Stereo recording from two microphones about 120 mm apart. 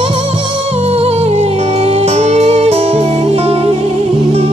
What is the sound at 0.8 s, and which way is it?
Music, 60° right (ahead or behind).